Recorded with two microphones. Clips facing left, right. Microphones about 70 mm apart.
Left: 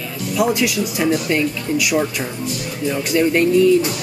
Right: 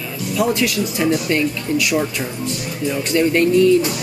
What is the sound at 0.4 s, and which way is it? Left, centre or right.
Speech, centre.